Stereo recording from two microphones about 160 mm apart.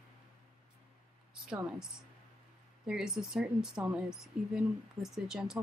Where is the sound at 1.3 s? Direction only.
5° right (ahead or behind).